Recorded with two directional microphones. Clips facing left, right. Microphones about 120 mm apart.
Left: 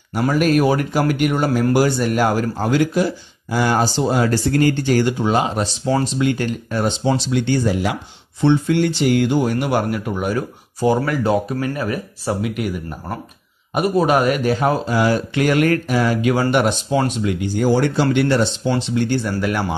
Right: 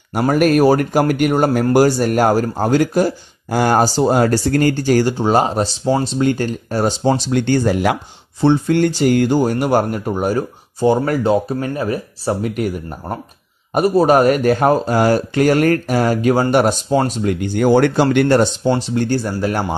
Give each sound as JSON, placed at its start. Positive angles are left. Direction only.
{"t": 0.3, "sound": "speech", "side_deg": -50}
{"t": 8.4, "sound": "speech", "side_deg": -40}
{"t": 13.7, "sound": "speech", "side_deg": -40}